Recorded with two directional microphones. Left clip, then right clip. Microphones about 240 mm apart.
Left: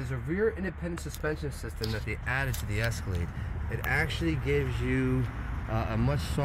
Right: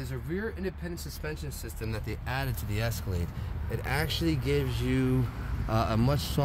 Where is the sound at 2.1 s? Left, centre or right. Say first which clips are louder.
Left 3 dB; centre.